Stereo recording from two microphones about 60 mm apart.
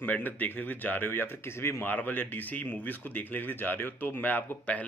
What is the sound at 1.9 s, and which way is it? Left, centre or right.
Speech, left.